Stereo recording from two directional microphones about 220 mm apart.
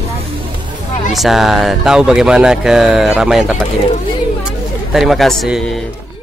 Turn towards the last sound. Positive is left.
turn(degrees=0)  # may be behind; listen again after turning